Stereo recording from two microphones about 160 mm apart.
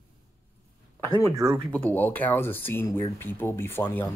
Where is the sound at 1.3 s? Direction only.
20° right (ahead or behind).